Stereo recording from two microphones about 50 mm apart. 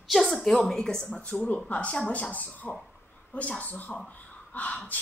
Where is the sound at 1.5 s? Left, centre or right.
Left.